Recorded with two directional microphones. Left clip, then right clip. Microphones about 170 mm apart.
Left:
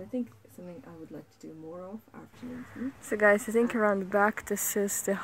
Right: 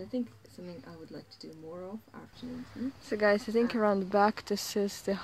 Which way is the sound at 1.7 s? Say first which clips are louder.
Right 1 dB; 15° right (ahead or behind).